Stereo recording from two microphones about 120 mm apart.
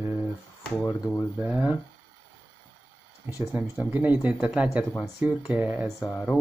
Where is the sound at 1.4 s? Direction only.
5° right (ahead or behind).